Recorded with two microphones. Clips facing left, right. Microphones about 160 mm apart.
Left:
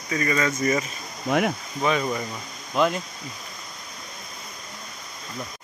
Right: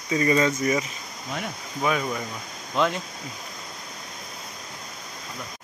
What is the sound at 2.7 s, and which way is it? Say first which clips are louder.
Speech: left 2 dB; 15° left (ahead or behind).